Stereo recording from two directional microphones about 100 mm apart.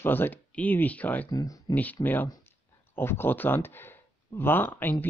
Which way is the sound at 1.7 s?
15° left (ahead or behind).